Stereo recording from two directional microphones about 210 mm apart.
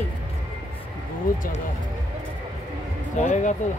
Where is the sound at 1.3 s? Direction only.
40° left (ahead or behind).